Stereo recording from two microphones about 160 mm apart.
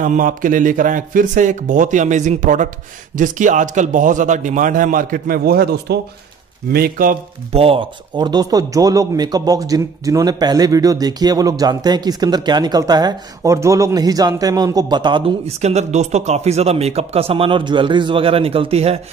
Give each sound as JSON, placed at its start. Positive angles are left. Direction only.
{"t": 0.0, "sound": "a man's voice", "side_deg": -55}
{"t": 7.5, "sound": "speech", "side_deg": -35}